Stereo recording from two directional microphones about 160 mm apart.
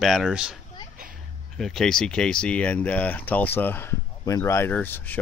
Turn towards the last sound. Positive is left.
turn(degrees=10)  # may be behind; listen again after turning